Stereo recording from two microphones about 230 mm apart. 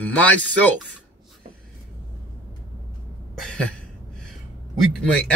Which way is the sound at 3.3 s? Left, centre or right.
Centre.